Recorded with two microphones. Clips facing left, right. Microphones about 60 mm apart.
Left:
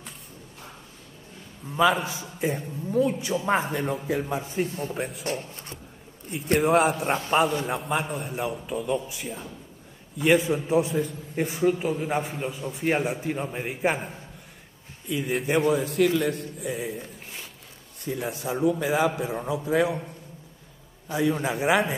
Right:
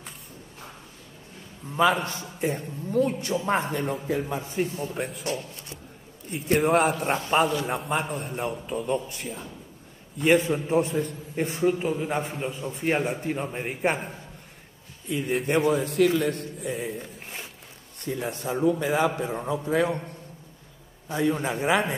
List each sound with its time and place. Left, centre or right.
1.7 s a man's voice: centre
5.2 s a man's voice: left
6.5 s a man's voice: centre
21.1 s a man's voice: centre